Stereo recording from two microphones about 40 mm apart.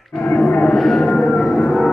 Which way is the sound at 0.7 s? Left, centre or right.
Centre.